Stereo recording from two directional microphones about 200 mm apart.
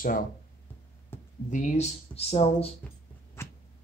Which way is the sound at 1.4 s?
40° left (ahead or behind).